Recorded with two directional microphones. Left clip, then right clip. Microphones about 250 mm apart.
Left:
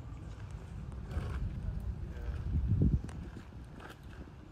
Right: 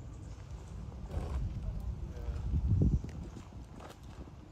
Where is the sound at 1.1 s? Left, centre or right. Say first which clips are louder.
Right 1 dB; right.